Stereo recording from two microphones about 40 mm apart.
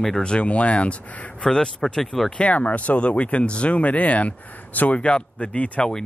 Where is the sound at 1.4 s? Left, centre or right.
Centre.